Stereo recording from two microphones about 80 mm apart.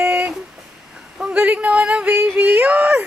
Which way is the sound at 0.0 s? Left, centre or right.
Right.